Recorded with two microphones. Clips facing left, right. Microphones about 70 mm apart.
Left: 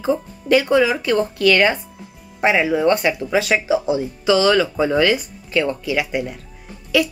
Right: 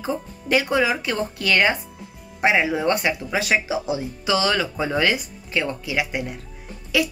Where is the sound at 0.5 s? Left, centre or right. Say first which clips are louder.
Left 5 dB; centre.